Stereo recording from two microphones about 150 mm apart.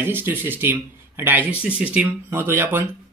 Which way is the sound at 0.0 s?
15° right (ahead or behind).